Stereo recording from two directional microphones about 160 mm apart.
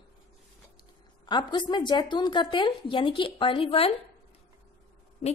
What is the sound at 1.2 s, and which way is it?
A woman's voice, 30° left (ahead or behind).